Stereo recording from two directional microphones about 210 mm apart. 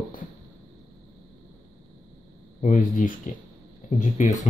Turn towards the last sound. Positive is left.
turn(degrees=35)  # may be behind; listen again after turning